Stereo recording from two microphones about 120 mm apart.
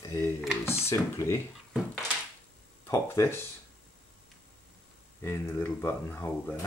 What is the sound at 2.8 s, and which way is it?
Speech, 20° left (ahead or behind).